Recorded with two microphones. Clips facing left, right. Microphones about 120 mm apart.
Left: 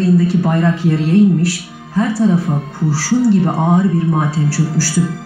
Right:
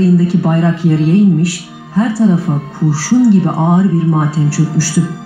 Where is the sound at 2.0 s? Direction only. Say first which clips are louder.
Right 2 dB; centre (ahead or behind).